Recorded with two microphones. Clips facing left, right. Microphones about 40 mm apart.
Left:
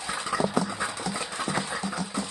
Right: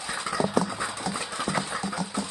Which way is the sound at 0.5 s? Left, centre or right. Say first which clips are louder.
Right 1 dB; right.